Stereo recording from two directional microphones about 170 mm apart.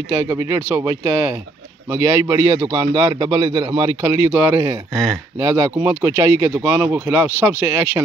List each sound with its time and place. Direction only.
0.1 s a man's voice: 15° right (ahead or behind)
4.9 s speech: centre (ahead or behind)
5.4 s speech: 20° right (ahead or behind)